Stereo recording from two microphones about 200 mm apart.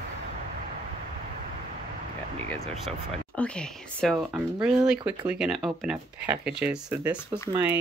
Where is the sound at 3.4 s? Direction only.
5° left (ahead or behind).